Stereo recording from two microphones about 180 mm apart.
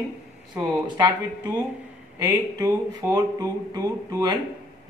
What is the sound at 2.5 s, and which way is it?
A woman's voice, 20° right (ahead or behind).